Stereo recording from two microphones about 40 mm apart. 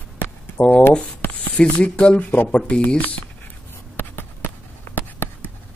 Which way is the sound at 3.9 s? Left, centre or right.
Left.